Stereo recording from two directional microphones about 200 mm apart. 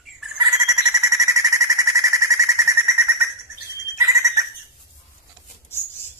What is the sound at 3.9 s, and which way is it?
Bird, 15° right (ahead or behind).